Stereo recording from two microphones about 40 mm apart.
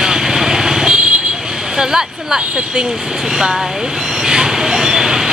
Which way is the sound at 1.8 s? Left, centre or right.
Centre.